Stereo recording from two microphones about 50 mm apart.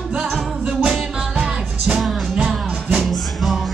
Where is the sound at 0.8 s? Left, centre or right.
Centre.